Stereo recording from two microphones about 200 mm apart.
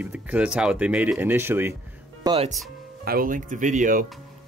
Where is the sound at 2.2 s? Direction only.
30° right (ahead or behind).